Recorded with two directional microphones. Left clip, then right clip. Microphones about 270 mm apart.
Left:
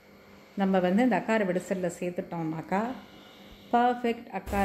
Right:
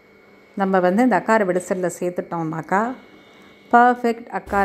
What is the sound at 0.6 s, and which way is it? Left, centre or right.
A woman's voice, right.